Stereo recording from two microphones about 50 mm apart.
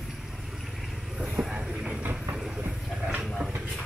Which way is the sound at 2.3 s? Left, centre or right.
Centre.